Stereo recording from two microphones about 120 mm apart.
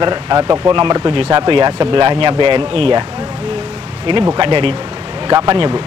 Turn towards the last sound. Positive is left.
turn(degrees=-35)  # may be behind; listen again after turning